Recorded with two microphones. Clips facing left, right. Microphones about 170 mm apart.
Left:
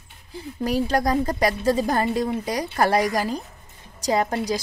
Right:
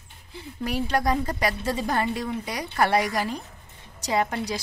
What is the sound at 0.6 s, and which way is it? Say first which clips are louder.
A woman's voice: left 4 dB; 35° left (ahead or behind).